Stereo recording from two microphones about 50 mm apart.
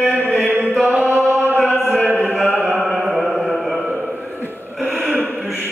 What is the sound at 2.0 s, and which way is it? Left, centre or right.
Music, right.